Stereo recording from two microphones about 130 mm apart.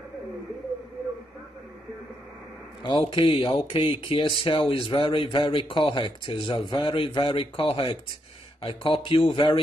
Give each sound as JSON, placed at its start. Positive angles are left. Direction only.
{"t": 3.1, "sound": "speech", "side_deg": 45}